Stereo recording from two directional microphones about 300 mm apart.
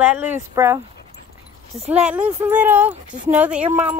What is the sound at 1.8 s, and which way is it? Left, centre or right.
Speech, centre.